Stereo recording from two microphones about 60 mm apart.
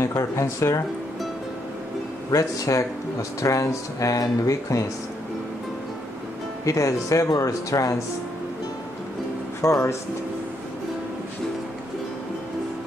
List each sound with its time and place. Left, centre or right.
0.0 s speech: left
2.3 s speech: left
6.6 s speech: left
9.6 s speech: left